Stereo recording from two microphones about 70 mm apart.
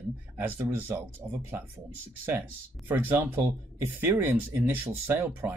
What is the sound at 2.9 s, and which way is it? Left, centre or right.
Speech, right.